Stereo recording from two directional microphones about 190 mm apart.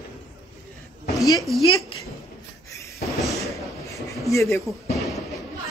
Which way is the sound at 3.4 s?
15° left (ahead or behind).